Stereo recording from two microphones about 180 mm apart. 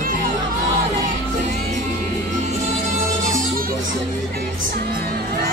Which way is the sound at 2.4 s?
45° right (ahead or behind).